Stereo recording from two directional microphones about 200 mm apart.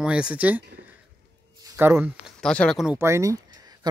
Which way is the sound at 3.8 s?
20° right (ahead or behind).